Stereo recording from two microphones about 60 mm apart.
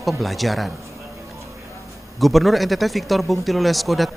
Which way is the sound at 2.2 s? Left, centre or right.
Centre.